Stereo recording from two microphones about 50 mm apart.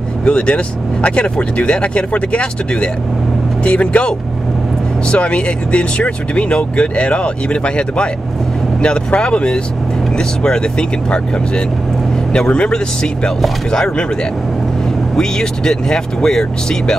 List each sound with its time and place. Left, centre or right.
0.2 s speech: left
15.1 s speech: centre